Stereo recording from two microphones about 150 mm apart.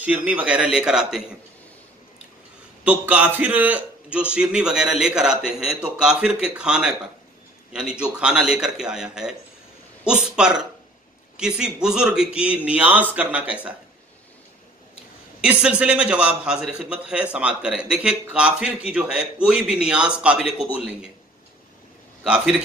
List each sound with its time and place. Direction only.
0.0 s a man's voice: 10° right (ahead or behind)
2.8 s a man's voice: 10° right (ahead or behind)
15.4 s a man's voice: 5° right (ahead or behind)
22.2 s speech: 5° right (ahead or behind)